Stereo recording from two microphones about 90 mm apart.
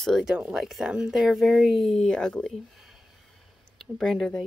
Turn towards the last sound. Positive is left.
turn(degrees=5)  # may be behind; listen again after turning